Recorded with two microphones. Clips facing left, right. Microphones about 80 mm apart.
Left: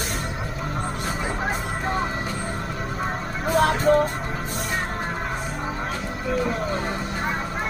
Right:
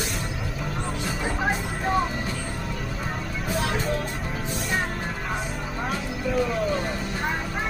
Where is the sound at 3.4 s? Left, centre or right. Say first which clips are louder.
Left 9 dB; left.